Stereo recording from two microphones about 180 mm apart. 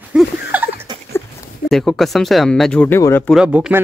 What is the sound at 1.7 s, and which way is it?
Speech, centre (ahead or behind).